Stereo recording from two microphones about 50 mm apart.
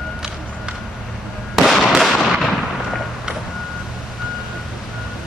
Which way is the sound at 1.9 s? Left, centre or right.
Centre.